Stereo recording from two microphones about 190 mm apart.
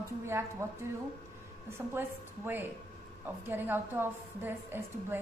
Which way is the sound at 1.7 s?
10° right (ahead or behind).